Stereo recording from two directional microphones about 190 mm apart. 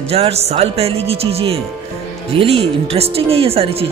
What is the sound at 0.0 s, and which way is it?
Speech, 35° right (ahead or behind).